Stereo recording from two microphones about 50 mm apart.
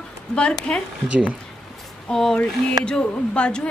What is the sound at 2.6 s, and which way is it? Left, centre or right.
Speech, left.